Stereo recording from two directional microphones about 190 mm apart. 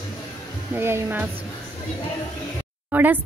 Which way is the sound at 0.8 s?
10° right (ahead or behind).